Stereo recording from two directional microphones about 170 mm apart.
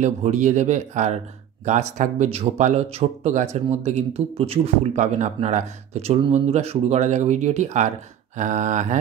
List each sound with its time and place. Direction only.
0.0 s speech: 45° right (ahead or behind)